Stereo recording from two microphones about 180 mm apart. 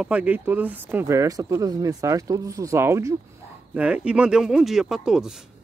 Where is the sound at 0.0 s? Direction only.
10° right (ahead or behind).